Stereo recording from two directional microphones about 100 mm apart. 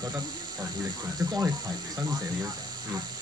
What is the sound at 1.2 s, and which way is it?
Speech, 40° right (ahead or behind).